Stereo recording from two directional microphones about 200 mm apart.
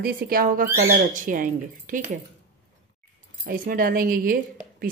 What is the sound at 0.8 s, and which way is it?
Speech, 35° right (ahead or behind).